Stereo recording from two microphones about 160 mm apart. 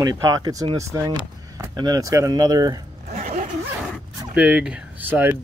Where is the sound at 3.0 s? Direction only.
50° right (ahead or behind).